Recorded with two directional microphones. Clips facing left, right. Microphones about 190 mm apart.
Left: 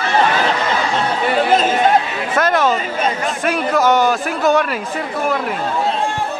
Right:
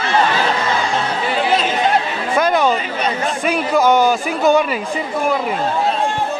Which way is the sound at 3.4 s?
Centre (ahead or behind).